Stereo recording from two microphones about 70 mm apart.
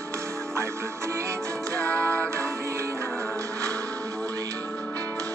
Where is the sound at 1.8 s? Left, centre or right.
Centre.